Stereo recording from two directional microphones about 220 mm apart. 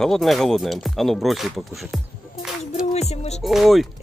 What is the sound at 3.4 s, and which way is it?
Speech, centre (ahead or behind).